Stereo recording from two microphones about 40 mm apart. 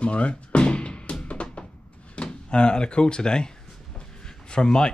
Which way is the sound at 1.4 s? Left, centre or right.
Left.